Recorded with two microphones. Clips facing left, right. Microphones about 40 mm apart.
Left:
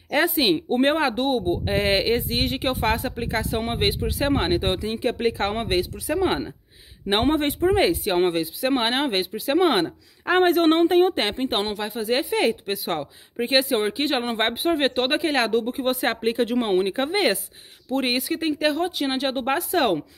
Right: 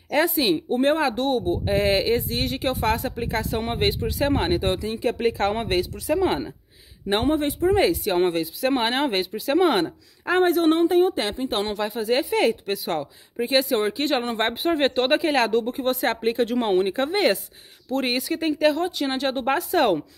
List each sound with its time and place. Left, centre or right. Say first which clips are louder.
0.1 s speech: even; left
0.9 s speech: even; left
5.2 s speech: right 3 dB; centre
7.2 s speech: even; left
7.6 s speech: right 1 dB; left
10.4 s speech: left 1 dB; left
11.7 s speech: right 1 dB; centre
14.5 s speech: even; centre